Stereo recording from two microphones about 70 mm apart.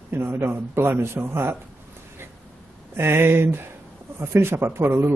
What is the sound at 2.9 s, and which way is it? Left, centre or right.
A man's voice, right.